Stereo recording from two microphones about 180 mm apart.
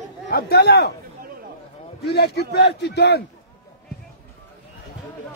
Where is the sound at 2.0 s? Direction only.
65° left (ahead or behind).